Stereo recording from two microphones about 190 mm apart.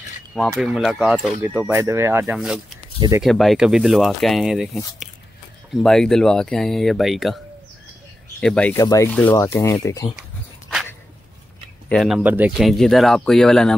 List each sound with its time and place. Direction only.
0.6 s speech: centre (ahead or behind)
5.8 s speech: centre (ahead or behind)
8.4 s speech: 5° left (ahead or behind)
8.7 s speech: 15° left (ahead or behind)
11.9 s speech: centre (ahead or behind)